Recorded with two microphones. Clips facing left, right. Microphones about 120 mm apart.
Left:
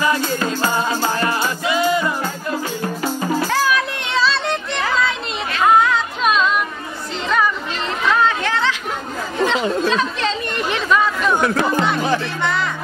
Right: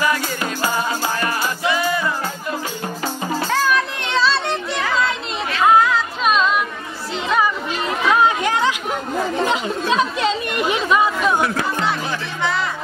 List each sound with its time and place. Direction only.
0.0 s music: 30° left (ahead or behind)
3.4 s music: 5° left (ahead or behind)
8.1 s chatter: 15° right (ahead or behind)
9.9 s chatter: 10° right (ahead or behind)
11.8 s music: centre (ahead or behind)